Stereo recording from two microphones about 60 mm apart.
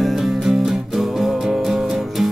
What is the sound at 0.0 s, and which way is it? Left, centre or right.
Music, centre.